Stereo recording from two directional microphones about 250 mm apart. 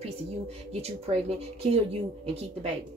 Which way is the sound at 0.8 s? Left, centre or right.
Right.